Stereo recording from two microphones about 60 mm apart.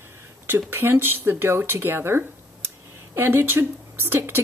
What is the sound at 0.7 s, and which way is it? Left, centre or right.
Speech, right.